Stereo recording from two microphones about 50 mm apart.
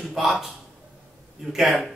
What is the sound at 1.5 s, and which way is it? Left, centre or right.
Speech, centre.